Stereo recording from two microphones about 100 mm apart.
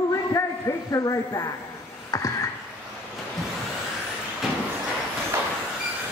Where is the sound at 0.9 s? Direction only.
35° left (ahead or behind).